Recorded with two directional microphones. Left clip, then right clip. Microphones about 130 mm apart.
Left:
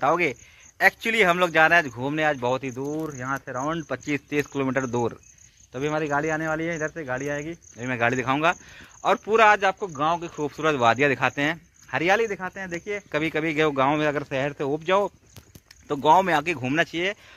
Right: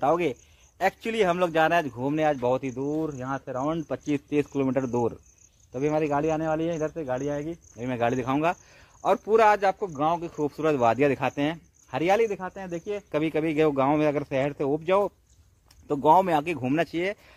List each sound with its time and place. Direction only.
0.2 s speech: 10° left (ahead or behind)
3.0 s speech: 30° left (ahead or behind)
3.6 s speech: 5° left (ahead or behind)